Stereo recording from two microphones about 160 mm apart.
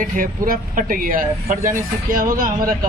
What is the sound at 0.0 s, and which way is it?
Speech, 60° right (ahead or behind).